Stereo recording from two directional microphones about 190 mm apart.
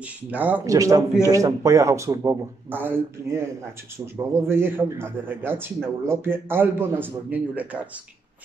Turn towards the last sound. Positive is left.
turn(degrees=-10)  # may be behind; listen again after turning